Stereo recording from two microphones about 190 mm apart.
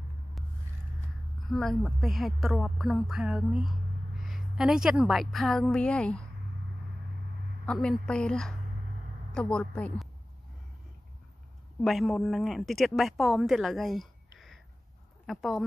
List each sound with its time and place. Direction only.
1.5 s a woman's voice: centre (ahead or behind)
7.6 s a woman's voice: 5° left (ahead or behind)
11.8 s a woman's voice: centre (ahead or behind)